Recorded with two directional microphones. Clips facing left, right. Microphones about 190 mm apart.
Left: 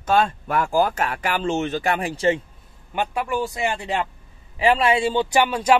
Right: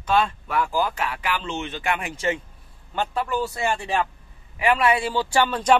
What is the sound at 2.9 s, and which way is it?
Speech, 15° left (ahead or behind).